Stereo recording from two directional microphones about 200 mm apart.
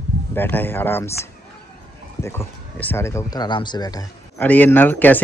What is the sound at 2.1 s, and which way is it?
Speech, 15° left (ahead or behind).